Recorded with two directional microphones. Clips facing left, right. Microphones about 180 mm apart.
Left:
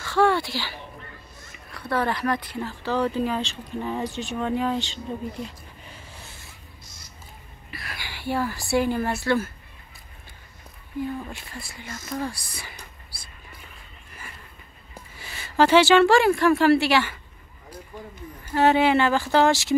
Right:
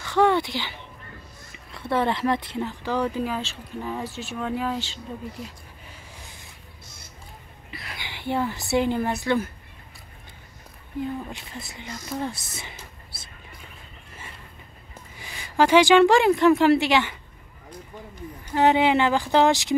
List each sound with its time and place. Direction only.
0.0 s a sound: 20° right (ahead or behind)
1.7 s speech: 25° right (ahead or behind); by 5.0 s 5° right (ahead or behind)
7.7 s a woman's voice: 20° right (ahead or behind)
11.2 s speech: 20° right (ahead or behind)
15.1 s speech: 15° right (ahead or behind)
18.5 s speech: 15° right (ahead or behind)